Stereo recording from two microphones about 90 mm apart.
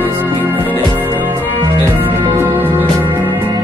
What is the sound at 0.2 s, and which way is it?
Music, 20° right (ahead or behind).